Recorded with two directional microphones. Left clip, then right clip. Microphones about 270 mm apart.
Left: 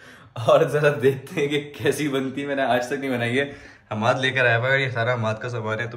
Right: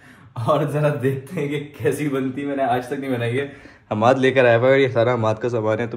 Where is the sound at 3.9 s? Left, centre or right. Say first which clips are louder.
Right 5 dB; centre.